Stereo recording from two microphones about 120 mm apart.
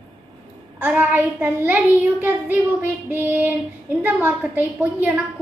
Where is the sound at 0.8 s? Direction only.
15° right (ahead or behind).